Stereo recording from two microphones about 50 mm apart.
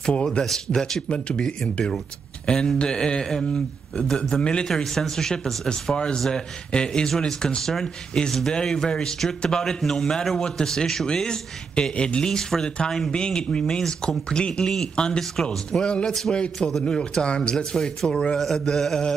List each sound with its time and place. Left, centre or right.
0.0 s speech: centre
4.6 s speech: centre
18.4 s speech: centre